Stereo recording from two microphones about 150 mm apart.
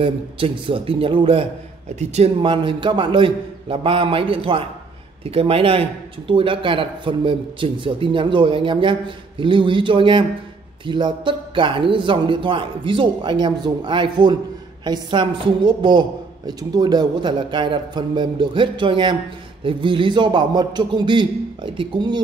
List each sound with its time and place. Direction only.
0.0 s a man's voice: 35° right (ahead or behind)